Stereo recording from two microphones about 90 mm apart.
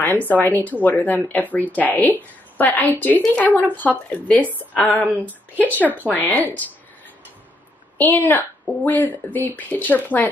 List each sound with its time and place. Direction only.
0.0 s speech: 20° left (ahead or behind)
8.0 s speech: 20° left (ahead or behind)